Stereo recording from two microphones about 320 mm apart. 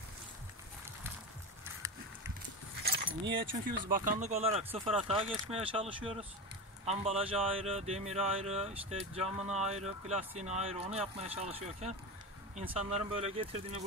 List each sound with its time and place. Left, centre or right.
2.8 s keys jangling: right
3.9 s speech: right